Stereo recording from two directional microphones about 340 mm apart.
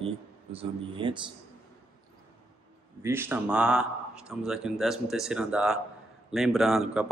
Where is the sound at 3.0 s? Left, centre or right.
Centre.